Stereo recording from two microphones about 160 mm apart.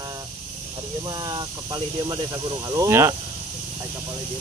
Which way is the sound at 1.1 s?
25° right (ahead or behind).